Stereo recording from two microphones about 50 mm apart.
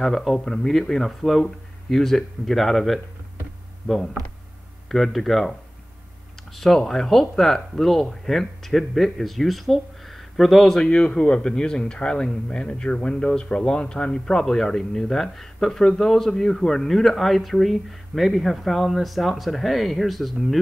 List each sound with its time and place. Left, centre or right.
0.0 s speech: centre
3.8 s speech: centre
10.8 s speech: centre